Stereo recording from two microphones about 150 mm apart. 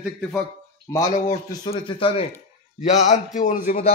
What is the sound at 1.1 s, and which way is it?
A man's voice, 40° left (ahead or behind).